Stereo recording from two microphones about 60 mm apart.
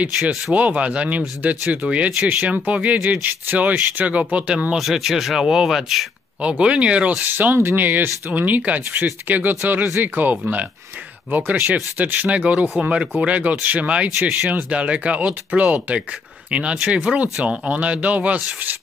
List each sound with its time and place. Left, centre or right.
0.2 s speech: centre
0.6 s speech: right
1.9 s speech: centre
2.2 s speech: right
4.7 s speech: centre
6.6 s speech: centre
7.2 s speech: right